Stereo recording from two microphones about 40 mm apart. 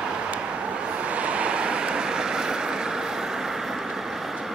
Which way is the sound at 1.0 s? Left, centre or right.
Right.